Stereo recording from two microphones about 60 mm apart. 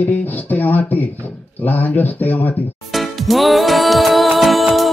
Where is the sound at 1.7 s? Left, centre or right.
Left.